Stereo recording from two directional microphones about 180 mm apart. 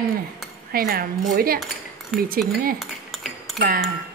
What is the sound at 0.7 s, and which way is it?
Cutlery, 55° right (ahead or behind).